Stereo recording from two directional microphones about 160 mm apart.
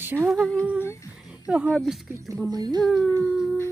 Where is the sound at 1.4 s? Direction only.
10° right (ahead or behind).